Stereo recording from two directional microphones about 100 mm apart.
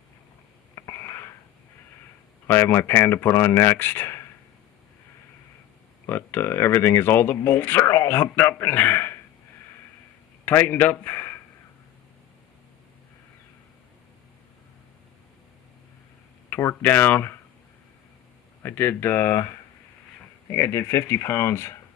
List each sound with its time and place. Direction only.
0.7 s a sound: 25° left (ahead or behind)
2.4 s speech: 25° left (ahead or behind)
6.0 s speech: 20° left (ahead or behind)
7.8 s speech: 30° left (ahead or behind)
10.4 s a man's voice: 20° left (ahead or behind)
16.4 s speech: 20° left (ahead or behind)
18.6 s speech: 20° left (ahead or behind)